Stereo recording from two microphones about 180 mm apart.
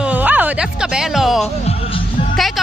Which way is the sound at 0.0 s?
10° right (ahead or behind).